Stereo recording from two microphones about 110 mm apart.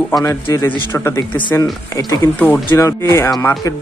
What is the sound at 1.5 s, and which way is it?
Speech, 30° left (ahead or behind).